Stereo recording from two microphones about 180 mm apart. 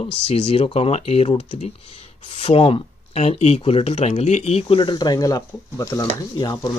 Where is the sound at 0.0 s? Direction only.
30° left (ahead or behind).